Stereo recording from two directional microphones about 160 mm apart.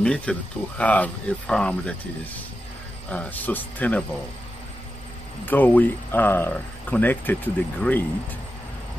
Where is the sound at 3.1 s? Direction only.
10° left (ahead or behind).